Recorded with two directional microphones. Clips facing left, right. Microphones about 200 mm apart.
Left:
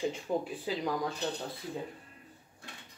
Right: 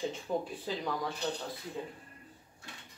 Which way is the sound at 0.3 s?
10° left (ahead or behind).